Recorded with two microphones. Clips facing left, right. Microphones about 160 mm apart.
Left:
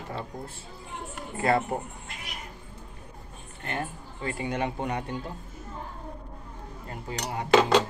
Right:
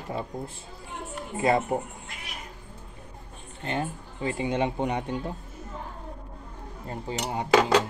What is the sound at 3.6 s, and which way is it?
Speech, 20° right (ahead or behind).